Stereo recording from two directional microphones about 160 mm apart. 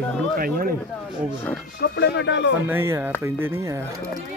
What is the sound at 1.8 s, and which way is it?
Speech, 85° left.